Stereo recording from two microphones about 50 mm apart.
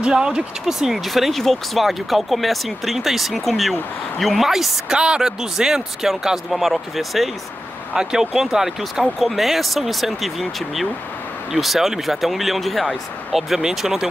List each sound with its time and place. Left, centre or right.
0.0 s speech: centre
0.7 s speech: centre
4.9 s speech: centre
7.9 s speech: centre